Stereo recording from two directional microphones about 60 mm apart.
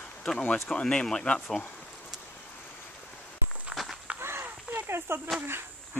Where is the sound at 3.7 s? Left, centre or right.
Right.